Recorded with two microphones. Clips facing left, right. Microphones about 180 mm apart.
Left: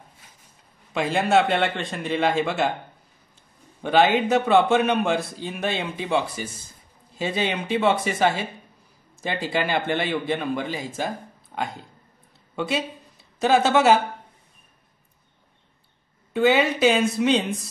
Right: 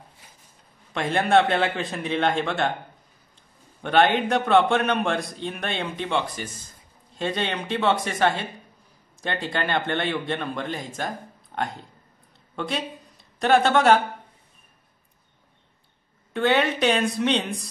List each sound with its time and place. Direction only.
0.9 s a man's voice: 5° left (ahead or behind)
3.8 s a man's voice: 5° left (ahead or behind)
16.3 s a man's voice: 5° left (ahead or behind)